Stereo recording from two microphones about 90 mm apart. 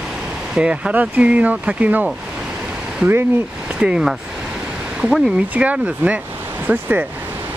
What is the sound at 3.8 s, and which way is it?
Speech, 10° right (ahead or behind).